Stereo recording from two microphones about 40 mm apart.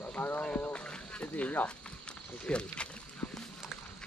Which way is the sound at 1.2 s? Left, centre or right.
Left.